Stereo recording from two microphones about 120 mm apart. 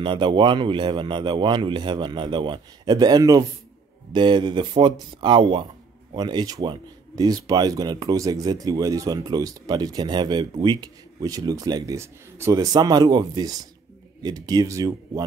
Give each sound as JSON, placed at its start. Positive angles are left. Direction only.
{"t": 0.0, "sound": "speech", "side_deg": -45}